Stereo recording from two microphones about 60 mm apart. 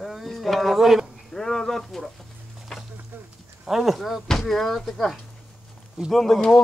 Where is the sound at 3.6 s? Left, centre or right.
Centre.